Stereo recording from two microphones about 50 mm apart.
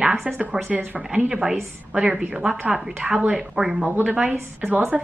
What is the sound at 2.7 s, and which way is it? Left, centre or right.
Speech, centre.